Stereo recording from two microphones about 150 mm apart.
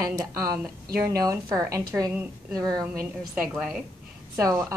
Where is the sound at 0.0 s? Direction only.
20° right (ahead or behind).